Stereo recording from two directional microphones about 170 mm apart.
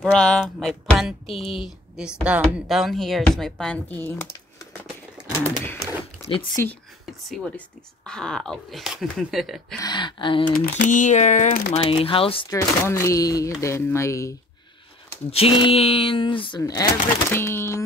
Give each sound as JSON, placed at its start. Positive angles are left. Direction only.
{"t": 0.1, "sound": "speech", "side_deg": 5}
{"t": 5.1, "sound": "a sound", "side_deg": -5}
{"t": 6.5, "sound": "speech", "side_deg": 15}
{"t": 9.8, "sound": "speech", "side_deg": 25}
{"t": 10.5, "sound": "speech", "side_deg": 50}
{"t": 11.7, "sound": "speech", "side_deg": 30}
{"t": 12.4, "sound": "speech", "side_deg": 15}
{"t": 15.3, "sound": "speech", "side_deg": 35}